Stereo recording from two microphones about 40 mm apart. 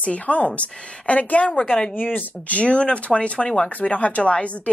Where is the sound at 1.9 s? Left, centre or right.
Left.